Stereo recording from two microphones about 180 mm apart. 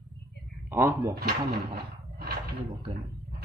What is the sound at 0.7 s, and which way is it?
Speech, 15° right (ahead or behind).